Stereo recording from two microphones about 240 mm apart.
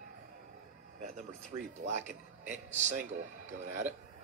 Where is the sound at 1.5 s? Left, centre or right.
Centre.